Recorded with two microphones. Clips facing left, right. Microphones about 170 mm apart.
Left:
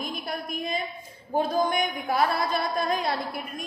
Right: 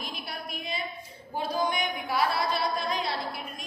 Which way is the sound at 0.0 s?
45° left (ahead or behind).